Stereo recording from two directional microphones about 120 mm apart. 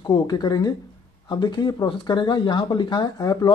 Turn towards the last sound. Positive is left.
turn(degrees=30)  # may be behind; listen again after turning